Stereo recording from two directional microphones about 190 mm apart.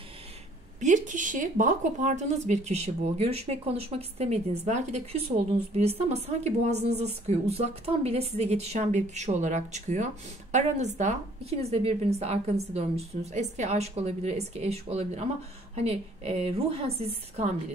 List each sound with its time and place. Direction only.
0.7 s a woman's voice: 40° right (ahead or behind)